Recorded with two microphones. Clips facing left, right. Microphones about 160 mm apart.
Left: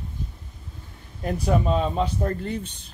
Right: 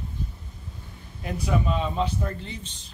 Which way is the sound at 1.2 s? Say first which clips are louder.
Left 4 dB; 40° left (ahead or behind).